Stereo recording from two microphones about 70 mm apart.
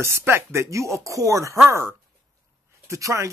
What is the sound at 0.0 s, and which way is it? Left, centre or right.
Speech, right.